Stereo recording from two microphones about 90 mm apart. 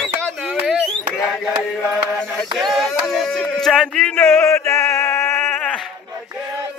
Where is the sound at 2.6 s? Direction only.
Centre (ahead or behind).